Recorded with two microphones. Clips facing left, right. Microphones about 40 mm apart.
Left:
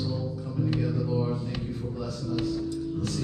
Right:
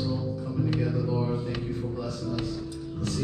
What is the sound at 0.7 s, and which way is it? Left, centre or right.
Music, centre.